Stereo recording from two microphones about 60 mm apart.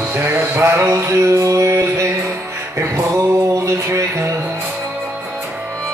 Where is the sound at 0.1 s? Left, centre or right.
Right.